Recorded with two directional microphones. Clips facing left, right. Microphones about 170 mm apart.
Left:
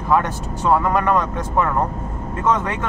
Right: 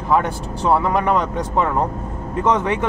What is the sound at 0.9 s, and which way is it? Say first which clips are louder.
Speech: even; 15° right (ahead or behind).